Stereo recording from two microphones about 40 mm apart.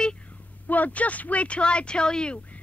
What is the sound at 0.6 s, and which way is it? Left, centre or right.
Speech, left.